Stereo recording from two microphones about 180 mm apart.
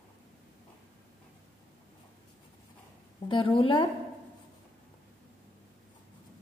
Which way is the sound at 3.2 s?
30° left (ahead or behind).